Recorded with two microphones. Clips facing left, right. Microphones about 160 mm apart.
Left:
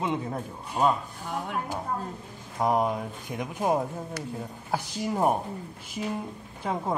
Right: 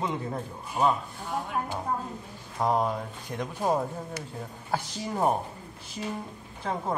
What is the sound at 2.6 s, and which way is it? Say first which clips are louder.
Speech: left 1 dB; 10° left (ahead or behind).